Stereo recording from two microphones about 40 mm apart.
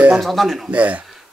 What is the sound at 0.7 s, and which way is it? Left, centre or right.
Speech, right.